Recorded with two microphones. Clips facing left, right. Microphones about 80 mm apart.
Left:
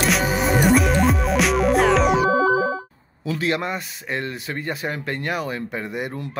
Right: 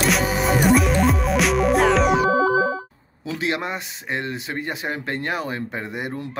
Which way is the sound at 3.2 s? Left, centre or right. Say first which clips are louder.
Left 2 dB; right.